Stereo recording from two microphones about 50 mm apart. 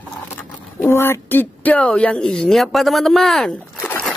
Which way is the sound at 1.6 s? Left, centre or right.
Left.